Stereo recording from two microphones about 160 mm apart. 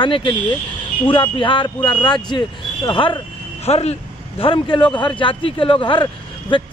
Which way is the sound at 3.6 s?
40° left (ahead or behind).